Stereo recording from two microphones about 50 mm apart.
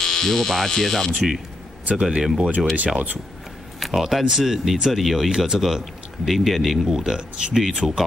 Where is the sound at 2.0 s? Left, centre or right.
Centre.